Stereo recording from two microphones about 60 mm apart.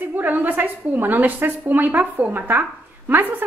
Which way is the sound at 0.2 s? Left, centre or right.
Right.